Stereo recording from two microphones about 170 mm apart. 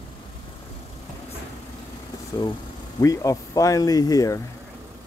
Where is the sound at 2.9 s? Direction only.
20° left (ahead or behind).